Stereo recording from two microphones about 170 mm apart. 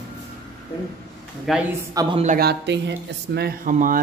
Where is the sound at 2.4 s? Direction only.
80° right.